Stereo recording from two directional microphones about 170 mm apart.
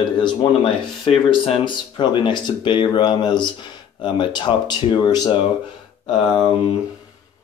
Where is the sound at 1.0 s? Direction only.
30° left (ahead or behind).